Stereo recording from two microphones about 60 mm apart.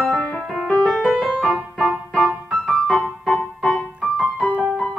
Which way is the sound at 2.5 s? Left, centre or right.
Centre.